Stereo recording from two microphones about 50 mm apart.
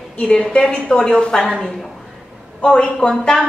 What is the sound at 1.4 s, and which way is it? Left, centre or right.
Speech, centre.